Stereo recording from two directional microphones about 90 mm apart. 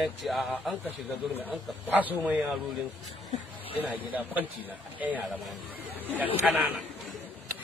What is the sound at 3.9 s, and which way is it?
Speech, 15° right (ahead or behind).